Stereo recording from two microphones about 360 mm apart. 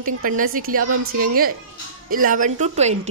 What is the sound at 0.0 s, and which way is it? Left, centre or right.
A woman's voice, right.